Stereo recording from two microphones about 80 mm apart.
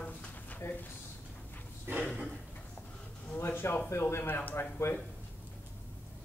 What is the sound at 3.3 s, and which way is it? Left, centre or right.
Speech, left.